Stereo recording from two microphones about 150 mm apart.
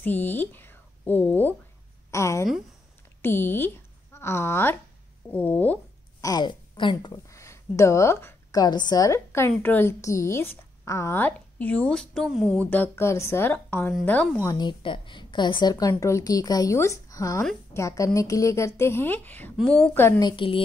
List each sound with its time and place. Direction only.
0.0 s a woman's voice: 10° left (ahead or behind)
6.2 s a woman's voice: 30° left (ahead or behind); by 12.4 s centre (ahead or behind)
12.5 s speech: 10° left (ahead or behind)
14.4 s a woman's voice: 25° left (ahead or behind)
20.2 s a woman's voice: 30° left (ahead or behind)